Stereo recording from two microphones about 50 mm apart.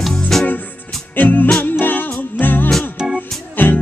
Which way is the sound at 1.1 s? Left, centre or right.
Left.